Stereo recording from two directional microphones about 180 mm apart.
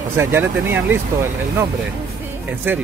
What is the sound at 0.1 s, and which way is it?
Speech, 15° right (ahead or behind).